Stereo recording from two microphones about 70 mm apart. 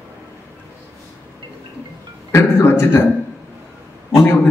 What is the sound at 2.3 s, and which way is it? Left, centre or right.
Speech, left.